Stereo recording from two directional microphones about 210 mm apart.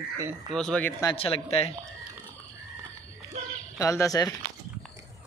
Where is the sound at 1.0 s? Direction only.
25° left (ahead or behind).